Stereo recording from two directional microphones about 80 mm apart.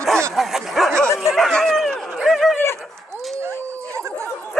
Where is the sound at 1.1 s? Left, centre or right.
Centre.